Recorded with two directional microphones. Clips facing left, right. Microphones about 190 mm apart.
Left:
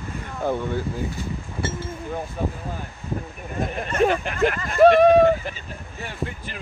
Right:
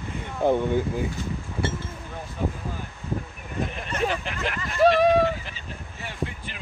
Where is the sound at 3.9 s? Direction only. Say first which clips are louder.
Left 9 dB; 50° left (ahead or behind).